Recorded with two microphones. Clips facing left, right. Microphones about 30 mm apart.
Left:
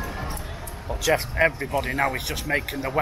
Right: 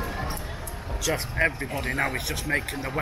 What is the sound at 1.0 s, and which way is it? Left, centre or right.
Speech, centre.